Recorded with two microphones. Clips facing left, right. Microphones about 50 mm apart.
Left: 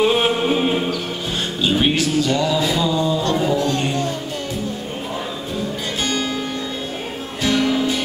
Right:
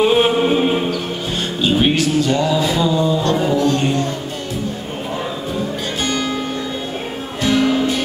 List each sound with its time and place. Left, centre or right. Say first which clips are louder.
0.0 s chant: right 3 dB; centre
1.6 s music: right 2 dB; centre
2.3 s mantra: right 2 dB; centre
3.3 s music: right 2 dB; centre
6.0 s music: right 2 dB; centre
7.4 s music: right 3 dB; centre